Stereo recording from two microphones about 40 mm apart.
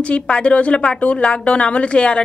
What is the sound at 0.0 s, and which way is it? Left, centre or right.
A woman's voice, left.